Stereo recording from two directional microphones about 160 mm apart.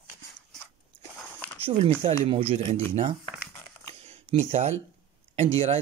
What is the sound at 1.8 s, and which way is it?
Speech, 40° right (ahead or behind).